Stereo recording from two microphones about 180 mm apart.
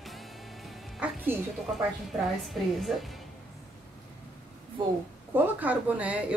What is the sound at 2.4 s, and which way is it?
Speech, centre (ahead or behind).